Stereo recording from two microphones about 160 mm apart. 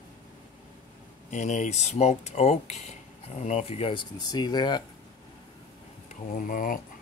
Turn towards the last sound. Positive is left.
turn(degrees=60)  # may be behind; listen again after turning